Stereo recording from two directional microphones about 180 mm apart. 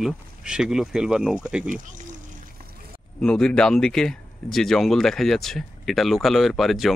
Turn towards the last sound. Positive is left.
turn(degrees=0)  # may be behind; listen again after turning